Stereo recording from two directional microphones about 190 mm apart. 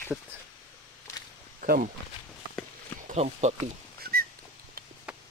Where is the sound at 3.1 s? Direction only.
40° right (ahead or behind).